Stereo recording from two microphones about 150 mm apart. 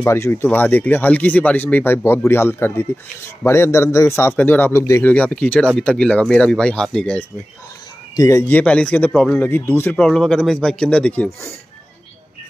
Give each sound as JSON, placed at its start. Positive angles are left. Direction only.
{"t": 0.0, "sound": "a man's voice", "side_deg": 15}
{"t": 8.2, "sound": "speech", "side_deg": 20}